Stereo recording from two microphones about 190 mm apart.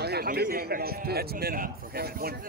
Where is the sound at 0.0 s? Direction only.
55° right (ahead or behind).